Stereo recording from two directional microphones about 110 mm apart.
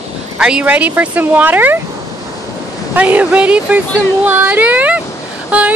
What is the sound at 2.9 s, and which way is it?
Speech, 15° right (ahead or behind).